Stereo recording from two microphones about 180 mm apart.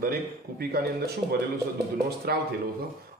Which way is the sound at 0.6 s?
60° right (ahead or behind).